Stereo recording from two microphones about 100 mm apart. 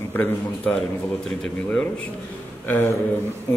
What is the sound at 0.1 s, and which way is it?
A man's voice, 15° left (ahead or behind).